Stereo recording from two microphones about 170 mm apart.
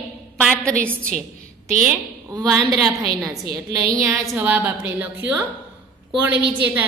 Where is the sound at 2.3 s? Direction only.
15° right (ahead or behind).